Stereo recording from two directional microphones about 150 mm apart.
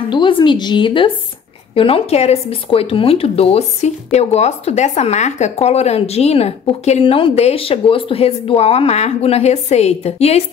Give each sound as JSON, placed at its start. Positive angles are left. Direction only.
{"t": 0.1, "sound": "a woman's voice", "side_deg": 30}